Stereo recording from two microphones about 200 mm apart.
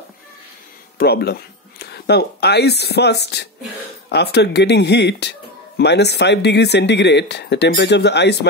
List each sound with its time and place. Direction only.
0.9 s speech: 50° left (ahead or behind)